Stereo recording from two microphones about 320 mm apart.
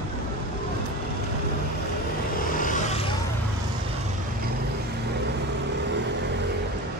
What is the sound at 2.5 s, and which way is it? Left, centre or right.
Vehicle, left.